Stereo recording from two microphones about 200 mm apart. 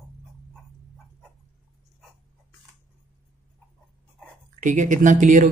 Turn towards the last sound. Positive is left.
turn(degrees=-40)  # may be behind; listen again after turning